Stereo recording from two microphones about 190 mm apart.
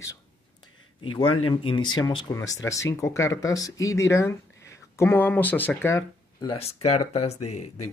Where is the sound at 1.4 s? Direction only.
30° left (ahead or behind).